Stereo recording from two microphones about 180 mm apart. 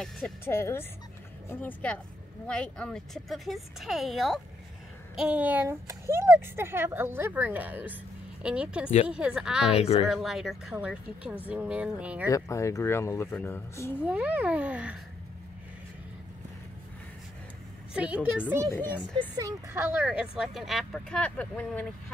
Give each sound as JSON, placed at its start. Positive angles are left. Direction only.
{"t": 0.5, "sound": "a child's voice", "side_deg": 15}
{"t": 9.7, "sound": "speech", "side_deg": 35}
{"t": 10.0, "sound": "speech", "side_deg": 0}
{"t": 12.3, "sound": "speech", "side_deg": 15}
{"t": 14.0, "sound": "a child's voice", "side_deg": -10}
{"t": 17.9, "sound": "speech", "side_deg": -5}
{"t": 18.8, "sound": "speech", "side_deg": 10}
{"t": 19.1, "sound": "speech", "side_deg": -20}